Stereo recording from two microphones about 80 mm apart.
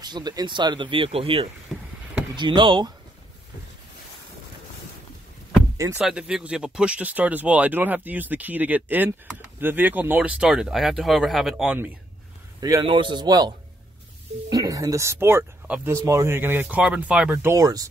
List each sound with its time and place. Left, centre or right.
0.0 s speech: right
1.7 s boat: centre
2.3 s speech: right
5.9 s speech: centre
10.4 s speech: centre
12.5 s a man's voice: right
12.9 s a man's voice: right
13.3 s a man's voice: right
16.8 s speech: centre
17.6 s speech: right